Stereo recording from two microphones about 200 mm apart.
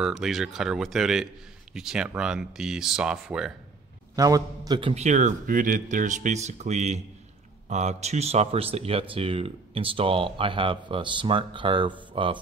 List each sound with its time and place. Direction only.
0.0 s speech: centre (ahead or behind)
4.1 s a man's voice: 15° right (ahead or behind)